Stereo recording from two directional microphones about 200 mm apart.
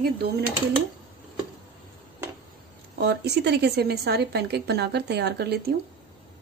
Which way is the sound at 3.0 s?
55° right (ahead or behind).